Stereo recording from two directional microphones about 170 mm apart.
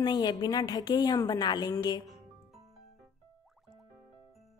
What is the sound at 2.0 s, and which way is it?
Music, centre (ahead or behind).